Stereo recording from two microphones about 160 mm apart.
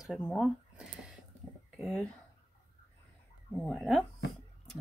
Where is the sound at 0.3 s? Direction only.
5° right (ahead or behind).